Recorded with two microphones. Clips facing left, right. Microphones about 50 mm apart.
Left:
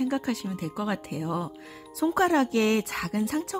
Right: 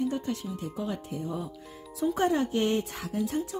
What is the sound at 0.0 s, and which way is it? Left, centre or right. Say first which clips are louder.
A woman's voice: left 3 dB; left.